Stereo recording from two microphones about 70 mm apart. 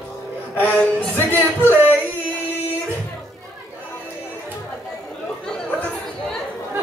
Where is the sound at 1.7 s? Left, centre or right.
Right.